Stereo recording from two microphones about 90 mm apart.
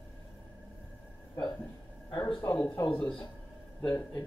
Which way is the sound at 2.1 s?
70° left (ahead or behind).